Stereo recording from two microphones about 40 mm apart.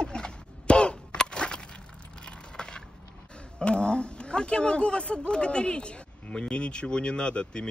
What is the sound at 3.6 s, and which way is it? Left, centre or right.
Speech, left.